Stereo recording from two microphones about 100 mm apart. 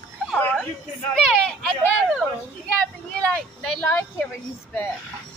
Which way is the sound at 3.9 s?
25° left (ahead or behind).